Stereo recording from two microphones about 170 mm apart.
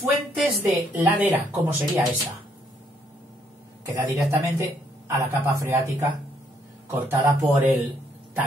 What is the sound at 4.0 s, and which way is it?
A man's voice, 15° right (ahead or behind).